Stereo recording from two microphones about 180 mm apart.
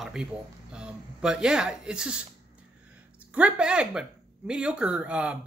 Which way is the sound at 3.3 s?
5° right (ahead or behind).